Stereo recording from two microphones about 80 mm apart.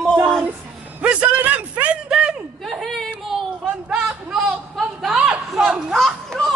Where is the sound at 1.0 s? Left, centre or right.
Centre.